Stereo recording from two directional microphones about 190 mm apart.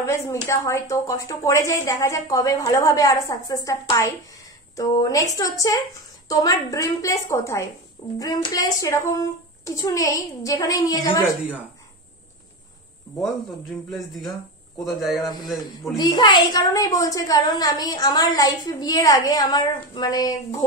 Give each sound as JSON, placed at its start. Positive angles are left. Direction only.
{"t": 0.0, "sound": "a woman's voice", "side_deg": 15}
{"t": 13.2, "sound": "a man's voice", "side_deg": 0}
{"t": 15.8, "sound": "a woman's voice", "side_deg": 20}